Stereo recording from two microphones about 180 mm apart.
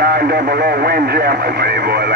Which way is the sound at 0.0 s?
60° right (ahead or behind).